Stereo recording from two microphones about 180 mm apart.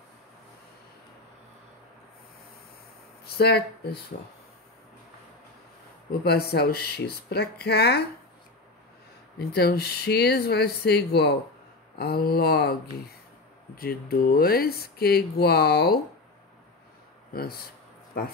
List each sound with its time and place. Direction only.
3.3 s speech: 60° left (ahead or behind)
6.0 s speech: 60° left (ahead or behind)
9.4 s speech: 60° left (ahead or behind)
13.7 s speech: 55° left (ahead or behind)
17.3 s speech: 60° left (ahead or behind)